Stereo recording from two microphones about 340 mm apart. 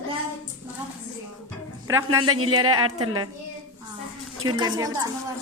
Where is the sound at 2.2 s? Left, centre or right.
Right.